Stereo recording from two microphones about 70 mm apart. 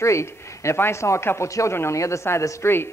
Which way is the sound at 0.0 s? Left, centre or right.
Left.